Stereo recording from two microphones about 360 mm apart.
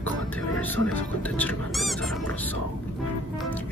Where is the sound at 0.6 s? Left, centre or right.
Centre.